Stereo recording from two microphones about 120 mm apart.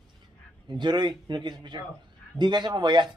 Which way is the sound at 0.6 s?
40° right (ahead or behind).